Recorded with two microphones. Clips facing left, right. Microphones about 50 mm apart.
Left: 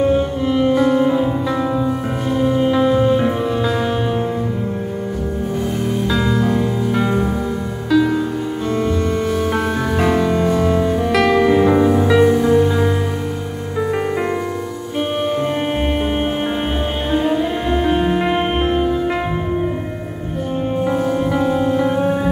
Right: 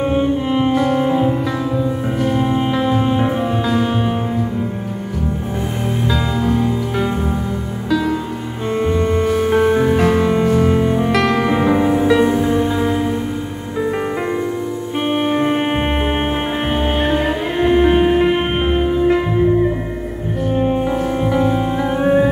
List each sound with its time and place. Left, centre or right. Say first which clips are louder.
0.1 s music: even; right
2.4 s music: left 2 dB; right
3.3 s music: even; centre
6.0 s music: left 1 dB; centre
9.5 s music: right 5 dB; right
9.9 s music: right 1 dB; centre
10.2 s music: right 1 dB; centre
11.1 s music: left 2 dB; centre; by 12.7 s right
13.7 s music: even; centre
15.0 s music: right 2 dB; right
17.6 s music: right 6 dB; right
20.5 s music: right 1 dB; centre